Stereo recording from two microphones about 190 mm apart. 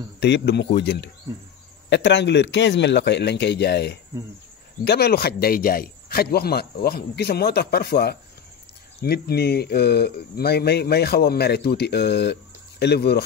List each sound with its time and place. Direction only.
0.2 s speech: 60° left (ahead or behind)